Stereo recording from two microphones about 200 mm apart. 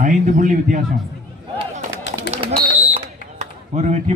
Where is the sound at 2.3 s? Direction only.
35° right (ahead or behind).